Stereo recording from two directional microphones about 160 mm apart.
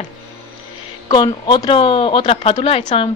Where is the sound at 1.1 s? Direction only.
25° left (ahead or behind).